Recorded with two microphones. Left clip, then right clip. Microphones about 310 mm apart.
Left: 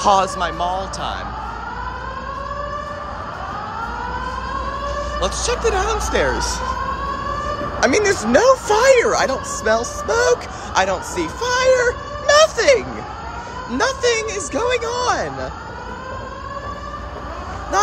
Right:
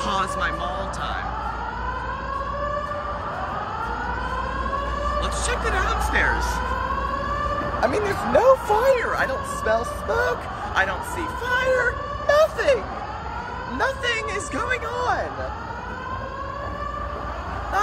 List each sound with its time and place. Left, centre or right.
0.0 s speech: centre
5.2 s speech: centre
7.8 s speech: left
13.7 s speech: left
14.1 s a woman's voice: centre
14.9 s speech: left